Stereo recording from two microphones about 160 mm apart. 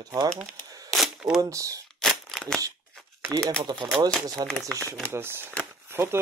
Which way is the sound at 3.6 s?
25° right (ahead or behind).